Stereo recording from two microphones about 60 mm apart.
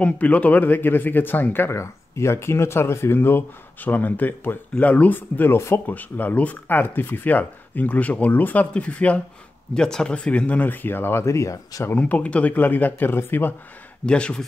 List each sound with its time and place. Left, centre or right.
0.0 s speech: left
1.8 s speech: left
3.2 s speech: left
9.8 s speech: centre; by 11.2 s left
11.2 s speech: left
12.0 s speech: left
14.0 s speech: centre